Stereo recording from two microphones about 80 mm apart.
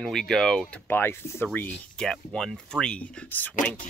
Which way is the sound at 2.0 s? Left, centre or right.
Centre.